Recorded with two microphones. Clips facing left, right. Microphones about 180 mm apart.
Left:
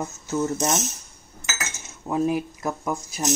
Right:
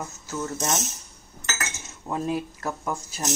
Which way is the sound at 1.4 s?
5° left (ahead or behind).